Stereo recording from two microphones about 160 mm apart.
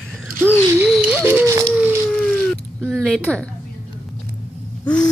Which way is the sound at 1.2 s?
15° right (ahead or behind).